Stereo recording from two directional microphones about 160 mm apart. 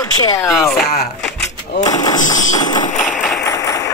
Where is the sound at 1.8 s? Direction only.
25° left (ahead or behind).